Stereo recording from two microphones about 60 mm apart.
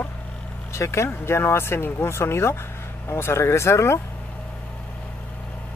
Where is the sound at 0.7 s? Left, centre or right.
Left.